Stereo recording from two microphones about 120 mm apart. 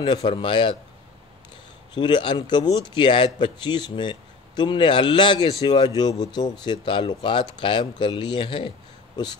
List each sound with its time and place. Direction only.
0.0 s speech: 45° left (ahead or behind)
2.0 s speech: 40° left (ahead or behind)